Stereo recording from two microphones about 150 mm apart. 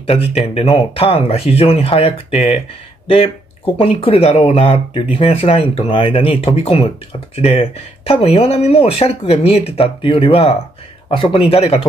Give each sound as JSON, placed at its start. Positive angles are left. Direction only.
{"t": 0.0, "sound": "speech", "side_deg": 40}
{"t": 3.7, "sound": "speech", "side_deg": 40}